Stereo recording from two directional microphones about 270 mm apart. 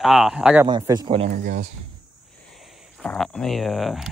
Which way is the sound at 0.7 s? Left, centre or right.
Centre.